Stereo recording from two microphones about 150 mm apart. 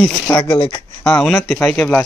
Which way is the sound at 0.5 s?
35° left (ahead or behind).